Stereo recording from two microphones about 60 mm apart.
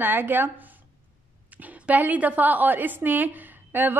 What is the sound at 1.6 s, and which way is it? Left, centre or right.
A woman's voice, right.